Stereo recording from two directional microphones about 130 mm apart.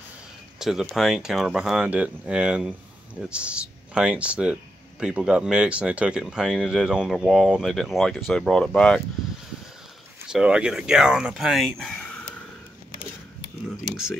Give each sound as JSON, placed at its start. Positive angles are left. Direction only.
{"t": 0.6, "sound": "speech", "side_deg": -5}
{"t": 10.2, "sound": "speech", "side_deg": -5}